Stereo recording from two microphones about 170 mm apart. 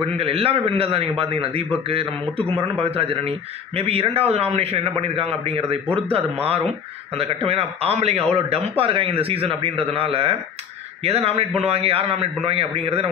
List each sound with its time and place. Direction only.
0.0 s a man's voice: 35° right (ahead or behind)